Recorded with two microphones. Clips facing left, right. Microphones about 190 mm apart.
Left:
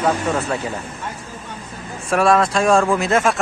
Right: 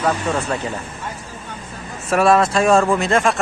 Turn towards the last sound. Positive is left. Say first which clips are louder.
# even
turn(degrees=0)  # may be behind; listen again after turning